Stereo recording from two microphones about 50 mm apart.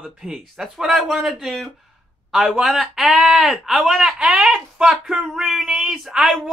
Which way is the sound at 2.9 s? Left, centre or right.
Centre.